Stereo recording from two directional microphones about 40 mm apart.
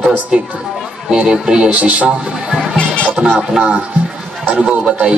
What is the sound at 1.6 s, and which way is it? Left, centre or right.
Speech, right.